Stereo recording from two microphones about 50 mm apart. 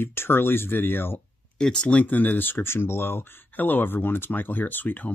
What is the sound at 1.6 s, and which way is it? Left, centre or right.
Speech, centre.